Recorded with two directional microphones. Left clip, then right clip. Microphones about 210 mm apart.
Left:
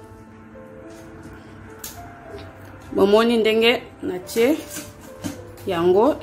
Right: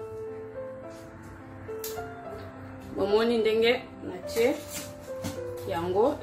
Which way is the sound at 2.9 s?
40° left (ahead or behind).